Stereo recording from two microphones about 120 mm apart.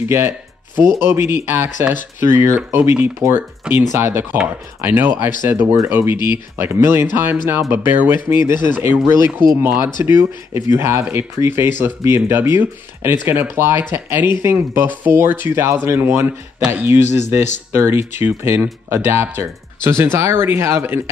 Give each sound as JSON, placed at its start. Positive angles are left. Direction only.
{"t": 0.1, "sound": "speech", "side_deg": -20}